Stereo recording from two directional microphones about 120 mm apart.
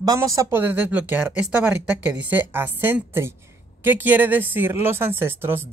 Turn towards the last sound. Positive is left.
turn(degrees=-15)  # may be behind; listen again after turning